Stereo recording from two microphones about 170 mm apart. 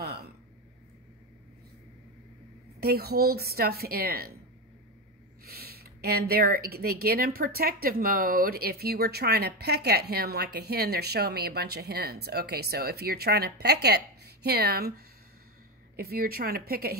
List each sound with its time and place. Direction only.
0.0 s a sound: 70° right (ahead or behind)
2.8 s a woman's voice: 65° right (ahead or behind)
5.4 s speech: 65° right (ahead or behind)
16.0 s a woman's voice: 65° right (ahead or behind)